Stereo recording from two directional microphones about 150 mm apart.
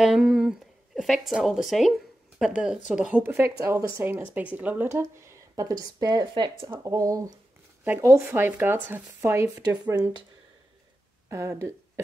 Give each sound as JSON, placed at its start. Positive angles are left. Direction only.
{"t": 0.0, "sound": "speech", "side_deg": 0}
{"t": 11.2, "sound": "speech", "side_deg": -20}